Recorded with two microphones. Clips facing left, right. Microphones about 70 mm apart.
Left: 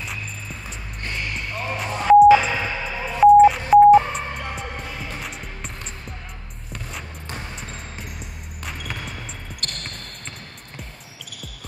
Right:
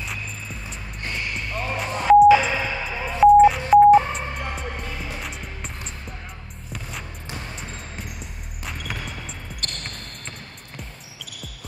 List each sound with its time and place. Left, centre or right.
1.8 s beep: centre
3.2 s music: centre
6.7 s music: centre